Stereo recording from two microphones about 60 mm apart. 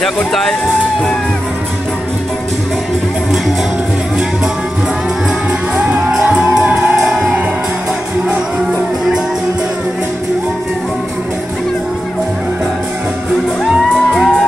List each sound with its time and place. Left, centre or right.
0.0 s speech: centre
5.8 s music: right
13.7 s music: centre